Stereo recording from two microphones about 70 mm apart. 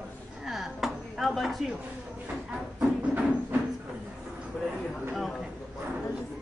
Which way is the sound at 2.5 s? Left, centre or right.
Centre.